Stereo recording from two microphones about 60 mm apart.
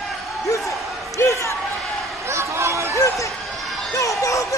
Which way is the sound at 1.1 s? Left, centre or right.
Left.